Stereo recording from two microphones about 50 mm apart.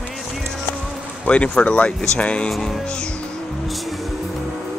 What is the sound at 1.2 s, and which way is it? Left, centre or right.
Speech, left.